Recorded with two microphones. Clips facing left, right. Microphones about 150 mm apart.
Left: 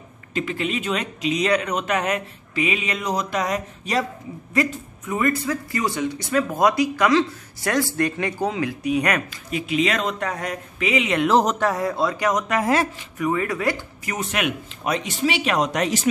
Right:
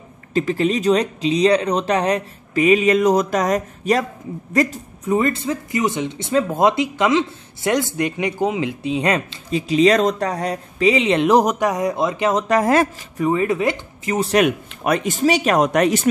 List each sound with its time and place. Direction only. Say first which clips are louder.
0.3 s speech: right 7 dB; 35° right (ahead or behind)
11.3 s speech: right 3 dB; 15° right (ahead or behind); by 12.8 s 40° right (ahead or behind)
13.2 s speech: right 4 dB; 25° right (ahead or behind)
14.8 s speech: right 5 dB; 55° right (ahead or behind)